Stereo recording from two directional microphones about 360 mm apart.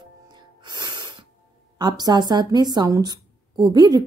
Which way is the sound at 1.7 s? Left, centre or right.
Centre.